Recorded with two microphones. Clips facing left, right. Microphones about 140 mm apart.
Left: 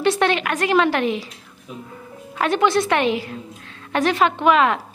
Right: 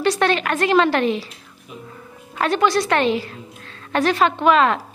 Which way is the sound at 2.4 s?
20° left (ahead or behind).